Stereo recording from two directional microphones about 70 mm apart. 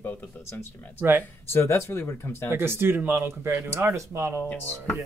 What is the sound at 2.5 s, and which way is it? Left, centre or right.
Speech, right.